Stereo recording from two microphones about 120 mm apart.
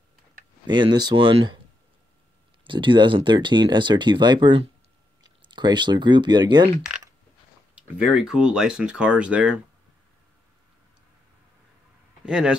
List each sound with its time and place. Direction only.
0.7 s speech: 40° right (ahead or behind)
2.6 s speech: 45° right (ahead or behind)
6.9 s coin: 5° right (ahead or behind)
7.7 s speech: 10° right (ahead or behind)
12.3 s speech: 5° right (ahead or behind)